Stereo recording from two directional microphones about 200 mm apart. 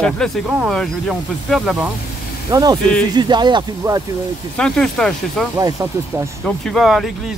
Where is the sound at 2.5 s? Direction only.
20° right (ahead or behind).